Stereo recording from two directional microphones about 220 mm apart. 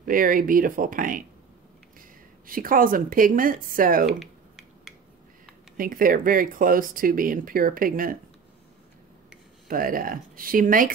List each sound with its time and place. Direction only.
0.0 s speech: 40° right (ahead or behind)
4.0 s typing: centre (ahead or behind)
5.8 s speech: 40° right (ahead or behind)
9.7 s speech: 40° right (ahead or behind)